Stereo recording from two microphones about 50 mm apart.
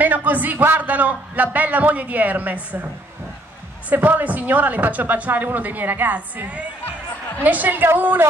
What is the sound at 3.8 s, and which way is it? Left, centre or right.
A woman's voice, right.